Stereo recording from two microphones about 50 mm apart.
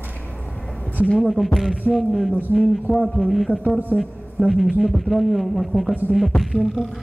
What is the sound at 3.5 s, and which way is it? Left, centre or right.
Speech, centre.